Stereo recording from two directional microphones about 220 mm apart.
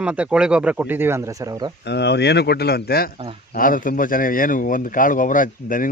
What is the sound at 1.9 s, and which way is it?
A man's voice, 50° left (ahead or behind).